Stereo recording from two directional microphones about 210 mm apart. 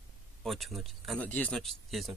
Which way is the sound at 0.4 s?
Centre (ahead or behind).